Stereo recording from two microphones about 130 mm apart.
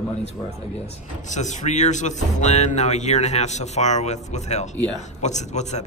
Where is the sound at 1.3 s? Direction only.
65° left (ahead or behind).